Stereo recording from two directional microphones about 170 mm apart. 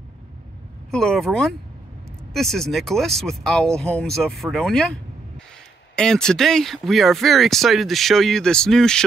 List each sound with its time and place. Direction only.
0.9 s speech: 5° left (ahead or behind)